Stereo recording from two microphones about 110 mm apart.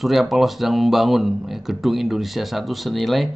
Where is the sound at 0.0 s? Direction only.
Centre (ahead or behind).